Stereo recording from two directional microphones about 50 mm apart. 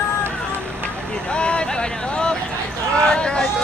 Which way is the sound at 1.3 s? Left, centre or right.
Centre.